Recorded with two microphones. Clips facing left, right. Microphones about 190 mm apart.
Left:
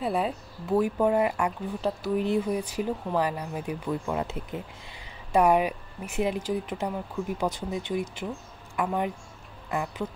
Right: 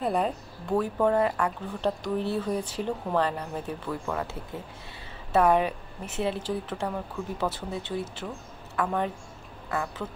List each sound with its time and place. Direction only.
0.0 s speech: 5° left (ahead or behind)